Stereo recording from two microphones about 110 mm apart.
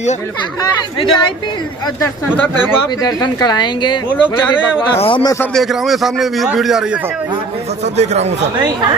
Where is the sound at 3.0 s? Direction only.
35° left (ahead or behind).